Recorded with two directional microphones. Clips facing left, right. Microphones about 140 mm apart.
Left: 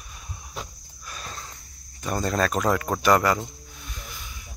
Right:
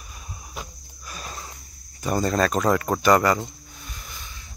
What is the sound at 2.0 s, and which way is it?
Speech, centre (ahead or behind).